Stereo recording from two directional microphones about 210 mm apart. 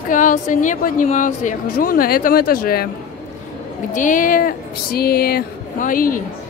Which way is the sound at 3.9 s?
40° left (ahead or behind).